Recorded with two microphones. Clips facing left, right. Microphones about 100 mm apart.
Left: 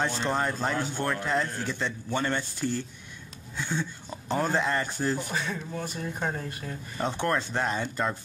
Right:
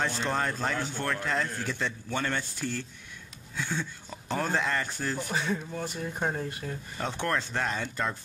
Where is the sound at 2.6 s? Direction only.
15° left (ahead or behind).